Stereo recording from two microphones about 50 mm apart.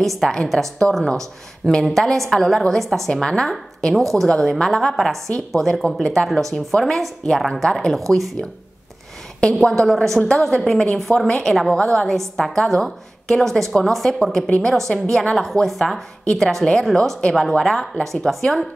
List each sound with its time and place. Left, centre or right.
0.0 s a woman's voice: centre
8.1 s speech: left
9.4 s a woman's voice: centre
15.3 s a woman's voice: centre